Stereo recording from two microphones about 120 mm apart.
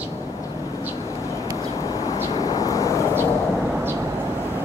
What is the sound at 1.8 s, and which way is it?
Vehicle, 30° left (ahead or behind).